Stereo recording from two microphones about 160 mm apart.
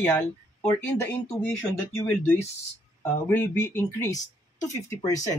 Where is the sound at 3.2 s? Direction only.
15° left (ahead or behind).